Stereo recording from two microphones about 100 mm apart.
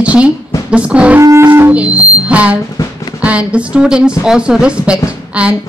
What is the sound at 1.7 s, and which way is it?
Speech, 10° right (ahead or behind).